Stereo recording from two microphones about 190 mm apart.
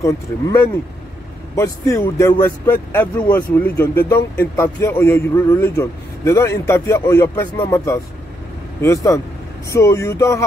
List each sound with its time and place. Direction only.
0.0 s a man's voice: 15° left (ahead or behind)